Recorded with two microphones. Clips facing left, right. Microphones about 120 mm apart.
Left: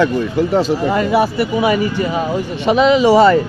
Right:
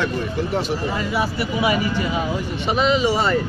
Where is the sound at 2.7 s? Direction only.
80° left.